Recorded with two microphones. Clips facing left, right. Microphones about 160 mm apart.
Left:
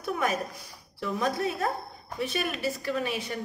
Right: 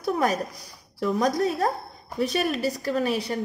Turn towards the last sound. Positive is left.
turn(degrees=-35)  # may be behind; listen again after turning